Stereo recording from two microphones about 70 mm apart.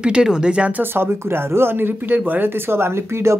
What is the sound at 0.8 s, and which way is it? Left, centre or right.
Speech, right.